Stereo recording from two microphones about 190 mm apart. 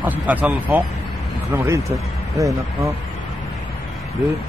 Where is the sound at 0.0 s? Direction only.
10° right (ahead or behind).